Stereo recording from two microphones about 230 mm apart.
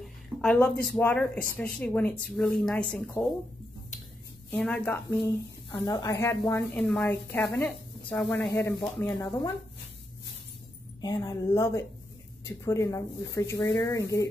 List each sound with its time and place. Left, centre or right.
0.0 s a sound: centre
0.9 s a woman's voice: centre
4.5 s a woman's voice: centre
11.0 s a woman's voice: centre